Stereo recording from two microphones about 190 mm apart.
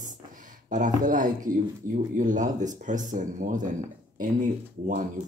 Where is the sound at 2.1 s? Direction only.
40° right (ahead or behind).